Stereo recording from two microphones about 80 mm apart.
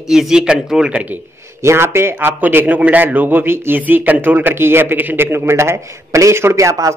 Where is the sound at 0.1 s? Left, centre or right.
Centre.